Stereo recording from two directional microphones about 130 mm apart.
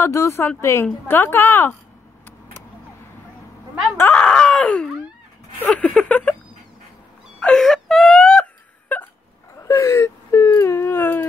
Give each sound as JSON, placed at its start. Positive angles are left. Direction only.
{"t": 0.0, "sound": "a woman's voice", "side_deg": 20}
{"t": 3.9, "sound": "groan", "side_deg": 15}
{"t": 5.6, "sound": "a woman's voice", "side_deg": 10}
{"t": 7.3, "sound": "wail", "side_deg": 5}
{"t": 9.6, "sound": "wail", "side_deg": 25}